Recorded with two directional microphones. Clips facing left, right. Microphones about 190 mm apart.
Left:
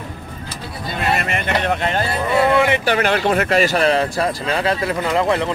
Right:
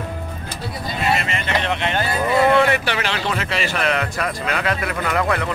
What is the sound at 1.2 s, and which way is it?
Music, 50° left (ahead or behind).